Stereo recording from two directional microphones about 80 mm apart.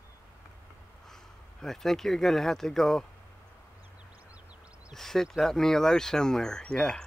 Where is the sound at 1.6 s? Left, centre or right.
Centre.